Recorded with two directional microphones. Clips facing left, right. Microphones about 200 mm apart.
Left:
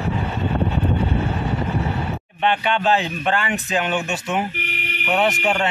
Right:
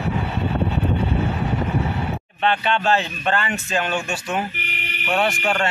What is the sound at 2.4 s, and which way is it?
Speech, 15° left (ahead or behind).